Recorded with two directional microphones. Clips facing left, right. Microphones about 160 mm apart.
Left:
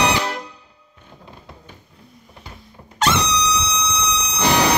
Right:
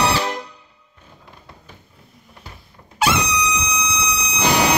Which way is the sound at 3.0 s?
10° right (ahead or behind).